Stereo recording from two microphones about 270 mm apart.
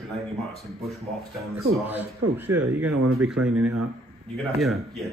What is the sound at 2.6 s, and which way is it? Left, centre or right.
Speech, centre.